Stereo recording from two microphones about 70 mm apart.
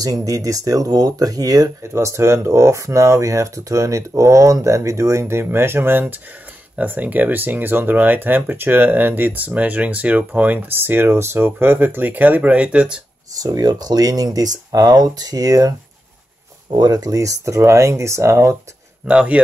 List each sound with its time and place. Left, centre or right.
0.0 s speech: right
1.8 s speech: right; by 13.0 s centre
13.4 s speech: right
16.7 s speech: right
19.0 s speech: centre